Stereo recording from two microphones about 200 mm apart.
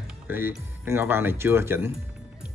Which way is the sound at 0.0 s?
5° right (ahead or behind).